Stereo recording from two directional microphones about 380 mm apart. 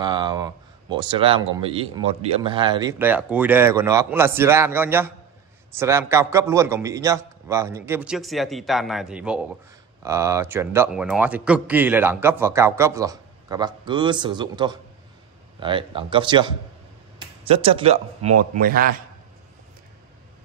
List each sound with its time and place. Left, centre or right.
0.0 s a man's voice: centre